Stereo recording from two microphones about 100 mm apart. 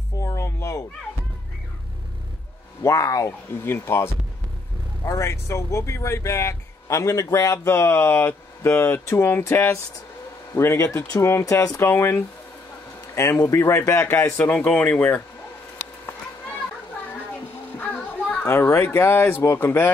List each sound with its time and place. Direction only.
0.2 s a sound: 30° left (ahead or behind)
2.8 s speech: 35° left (ahead or behind)
14.6 s speech: 15° left (ahead or behind)
17.7 s speech: 15° left (ahead or behind)